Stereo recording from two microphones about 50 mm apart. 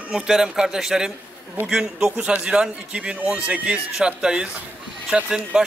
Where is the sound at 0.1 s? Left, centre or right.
Centre.